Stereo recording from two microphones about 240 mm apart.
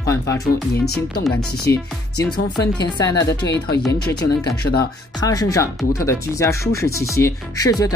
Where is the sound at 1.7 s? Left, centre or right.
Centre.